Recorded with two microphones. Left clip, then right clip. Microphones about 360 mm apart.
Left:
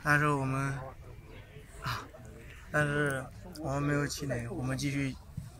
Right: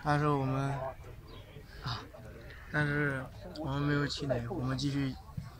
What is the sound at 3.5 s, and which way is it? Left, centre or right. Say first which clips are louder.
Speech: left 1 dB; centre.